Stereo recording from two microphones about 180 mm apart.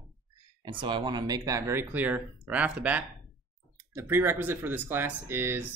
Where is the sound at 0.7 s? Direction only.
25° right (ahead or behind).